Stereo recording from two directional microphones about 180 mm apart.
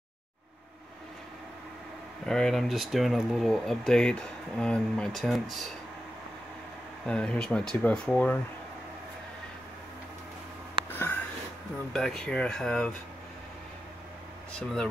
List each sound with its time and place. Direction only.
2.2 s speech: 5° left (ahead or behind)
7.1 s speech: 5° left (ahead or behind)
10.9 s a sound: 10° left (ahead or behind)
11.9 s speech: centre (ahead or behind)